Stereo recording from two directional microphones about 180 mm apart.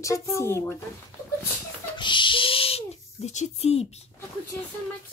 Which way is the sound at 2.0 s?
25° left (ahead or behind).